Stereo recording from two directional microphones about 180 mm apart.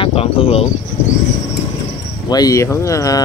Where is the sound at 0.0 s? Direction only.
30° left (ahead or behind).